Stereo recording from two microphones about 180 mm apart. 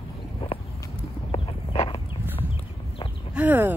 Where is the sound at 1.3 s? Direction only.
30° left (ahead or behind).